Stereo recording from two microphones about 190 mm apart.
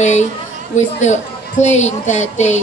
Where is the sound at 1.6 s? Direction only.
40° left (ahead or behind).